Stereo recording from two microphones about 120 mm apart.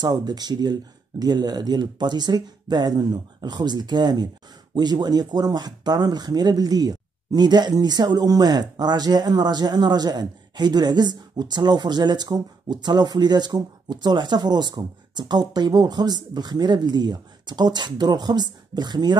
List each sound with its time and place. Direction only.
0.0 s speech: 35° right (ahead or behind)